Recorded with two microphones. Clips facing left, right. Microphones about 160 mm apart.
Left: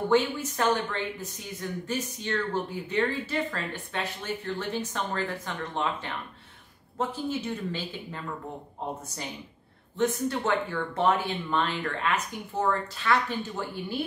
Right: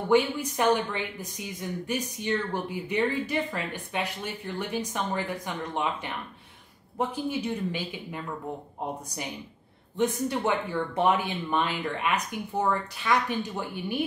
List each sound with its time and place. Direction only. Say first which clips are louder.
0.1 s a woman's voice: right 3 dB; 15° right (ahead or behind)
9.9 s a woman's voice: even; 15° right (ahead or behind)